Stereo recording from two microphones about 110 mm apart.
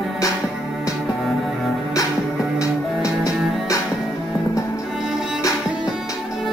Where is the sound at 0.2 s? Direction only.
30° left (ahead or behind).